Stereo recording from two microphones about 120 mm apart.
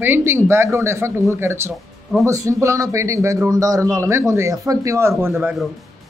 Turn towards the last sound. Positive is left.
turn(degrees=-20)  # may be behind; listen again after turning